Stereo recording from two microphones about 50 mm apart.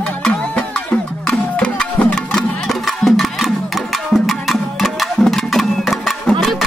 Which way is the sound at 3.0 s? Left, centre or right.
Centre.